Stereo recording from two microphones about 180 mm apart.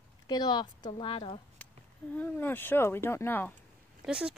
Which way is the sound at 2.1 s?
10° left (ahead or behind).